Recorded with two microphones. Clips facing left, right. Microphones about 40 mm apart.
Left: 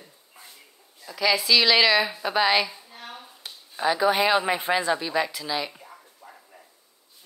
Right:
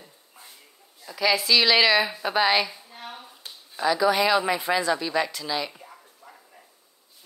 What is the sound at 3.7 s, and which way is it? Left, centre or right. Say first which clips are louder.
Speech: even; left.